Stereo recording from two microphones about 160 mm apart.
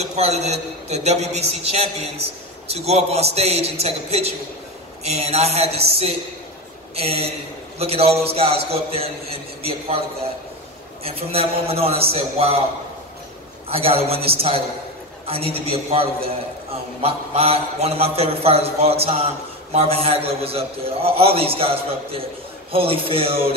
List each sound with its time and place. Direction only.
0.0 s a man's voice: 45° right (ahead or behind)
11.1 s a man's voice: 35° right (ahead or behind)
13.7 s a man's voice: 35° right (ahead or behind)